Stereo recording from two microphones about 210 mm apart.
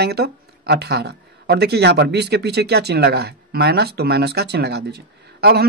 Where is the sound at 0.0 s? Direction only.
50° right (ahead or behind).